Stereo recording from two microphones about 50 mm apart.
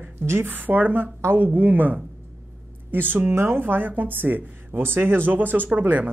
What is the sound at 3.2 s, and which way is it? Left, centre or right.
Speech, right.